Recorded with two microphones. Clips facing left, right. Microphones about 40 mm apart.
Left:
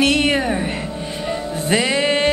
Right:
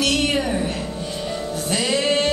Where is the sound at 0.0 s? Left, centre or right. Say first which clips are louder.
Left 4 dB; left.